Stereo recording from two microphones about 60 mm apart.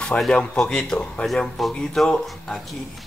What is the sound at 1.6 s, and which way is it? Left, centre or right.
Speech, centre.